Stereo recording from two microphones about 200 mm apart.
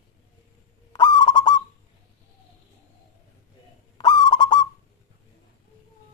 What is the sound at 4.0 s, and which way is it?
Owl, 20° left (ahead or behind).